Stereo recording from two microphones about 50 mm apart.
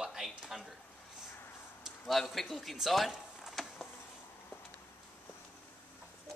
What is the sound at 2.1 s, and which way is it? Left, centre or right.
A man's voice, centre.